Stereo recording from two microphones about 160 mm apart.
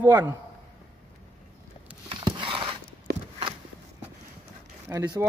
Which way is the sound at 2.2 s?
30° right (ahead or behind).